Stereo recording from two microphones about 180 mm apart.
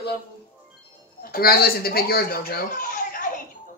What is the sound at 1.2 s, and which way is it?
Speech, 55° left (ahead or behind).